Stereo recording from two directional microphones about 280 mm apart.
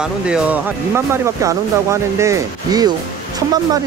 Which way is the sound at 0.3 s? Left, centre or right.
Centre.